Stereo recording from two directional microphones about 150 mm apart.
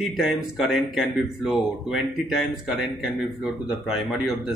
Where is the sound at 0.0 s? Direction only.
Centre (ahead or behind).